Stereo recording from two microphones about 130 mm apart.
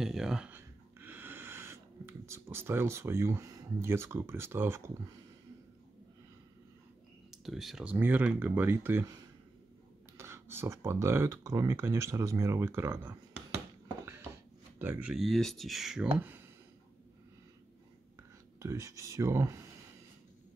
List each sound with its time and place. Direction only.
0.0 s speech: 5° right (ahead or behind)
0.6 s a sound: 15° right (ahead or behind)
7.2 s speech: centre (ahead or behind); by 9.0 s 15° right (ahead or behind)
10.1 s speech: 20° right (ahead or behind)
14.8 s speech: 15° right (ahead or behind)
15.1 s speech: centre (ahead or behind); by 16.4 s 15° right (ahead or behind)
18.6 s speech: 20° right (ahead or behind)